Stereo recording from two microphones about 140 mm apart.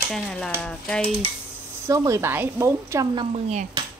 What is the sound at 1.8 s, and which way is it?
Speech, 25° right (ahead or behind).